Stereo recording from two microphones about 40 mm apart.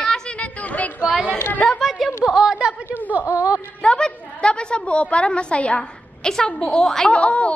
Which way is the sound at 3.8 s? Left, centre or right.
Left.